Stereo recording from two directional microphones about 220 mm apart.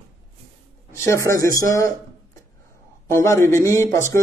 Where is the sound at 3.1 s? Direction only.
10° left (ahead or behind).